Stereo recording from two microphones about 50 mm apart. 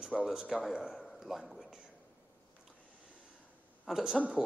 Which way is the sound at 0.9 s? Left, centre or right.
Centre.